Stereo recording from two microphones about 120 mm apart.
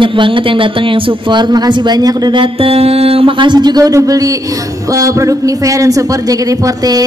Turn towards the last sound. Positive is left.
turn(degrees=-30)  # may be behind; listen again after turning